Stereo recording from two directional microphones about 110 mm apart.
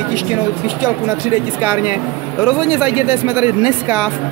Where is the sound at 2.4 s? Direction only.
5° right (ahead or behind).